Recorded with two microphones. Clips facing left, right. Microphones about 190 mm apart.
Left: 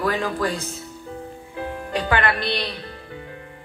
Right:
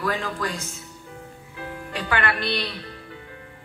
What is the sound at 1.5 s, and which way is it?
Music, 25° left (ahead or behind).